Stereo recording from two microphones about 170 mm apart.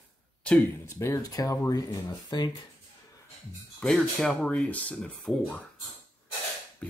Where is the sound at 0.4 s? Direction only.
10° left (ahead or behind).